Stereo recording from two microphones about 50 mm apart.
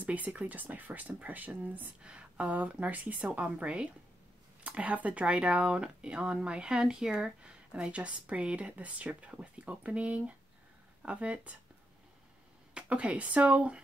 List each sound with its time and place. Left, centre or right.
0.0 s speech: right
2.0 s speech: right
12.9 s speech: right